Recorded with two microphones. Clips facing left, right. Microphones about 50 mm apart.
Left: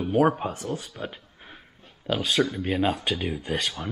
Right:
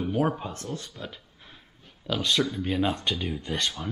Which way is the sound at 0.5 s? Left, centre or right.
Centre.